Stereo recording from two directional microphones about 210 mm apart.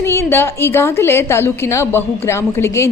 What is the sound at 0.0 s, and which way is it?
A woman's voice, 10° left (ahead or behind).